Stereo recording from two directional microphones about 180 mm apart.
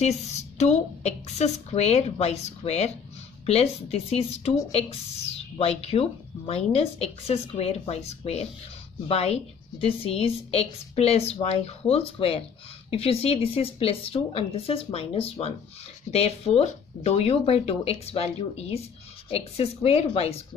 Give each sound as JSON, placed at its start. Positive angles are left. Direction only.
{"t": 0.0, "sound": "a woman's voice", "side_deg": 35}